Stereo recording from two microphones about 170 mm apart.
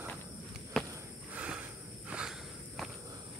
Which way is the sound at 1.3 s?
10° right (ahead or behind).